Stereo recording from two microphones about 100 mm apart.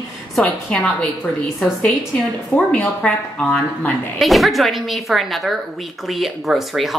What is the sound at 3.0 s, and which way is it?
Speech, 10° left (ahead or behind).